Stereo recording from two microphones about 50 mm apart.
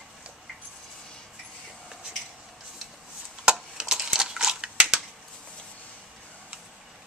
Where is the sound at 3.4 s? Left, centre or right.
Centre.